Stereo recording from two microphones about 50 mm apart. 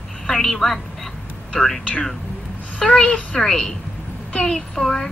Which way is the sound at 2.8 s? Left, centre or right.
Centre.